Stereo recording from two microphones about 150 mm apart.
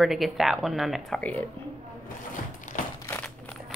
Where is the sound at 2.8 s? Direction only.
60° left (ahead or behind).